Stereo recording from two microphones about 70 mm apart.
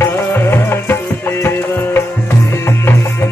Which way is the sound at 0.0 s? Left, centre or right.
Left.